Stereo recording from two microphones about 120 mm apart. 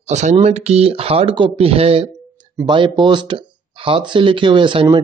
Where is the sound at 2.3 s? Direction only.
40° right (ahead or behind).